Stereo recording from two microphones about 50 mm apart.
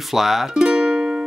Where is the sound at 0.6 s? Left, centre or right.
Centre.